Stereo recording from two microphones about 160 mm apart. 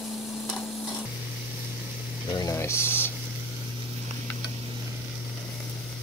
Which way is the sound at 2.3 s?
20° left (ahead or behind).